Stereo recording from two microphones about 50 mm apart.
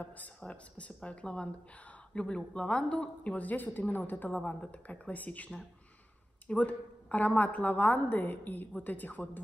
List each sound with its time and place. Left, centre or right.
0.0 s a woman's voice: left